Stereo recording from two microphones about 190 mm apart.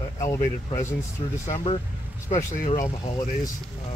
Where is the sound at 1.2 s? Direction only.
35° left (ahead or behind).